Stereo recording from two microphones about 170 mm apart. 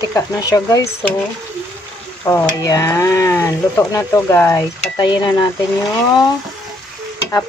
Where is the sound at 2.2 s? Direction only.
15° left (ahead or behind).